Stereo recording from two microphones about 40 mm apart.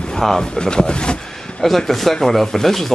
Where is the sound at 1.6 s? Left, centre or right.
Centre.